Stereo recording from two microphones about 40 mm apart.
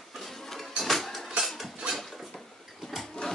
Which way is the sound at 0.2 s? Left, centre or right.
Centre.